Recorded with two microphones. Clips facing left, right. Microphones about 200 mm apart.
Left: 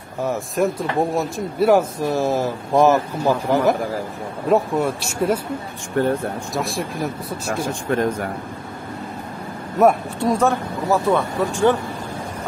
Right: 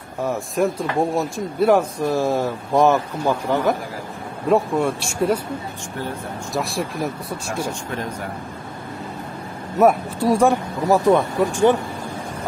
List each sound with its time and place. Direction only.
0.2 s speech: centre (ahead or behind)
6.0 s speech: 55° left (ahead or behind)
6.5 s speech: centre (ahead or behind)
7.9 s speech: 55° left (ahead or behind)
9.8 s speech: 5° right (ahead or behind)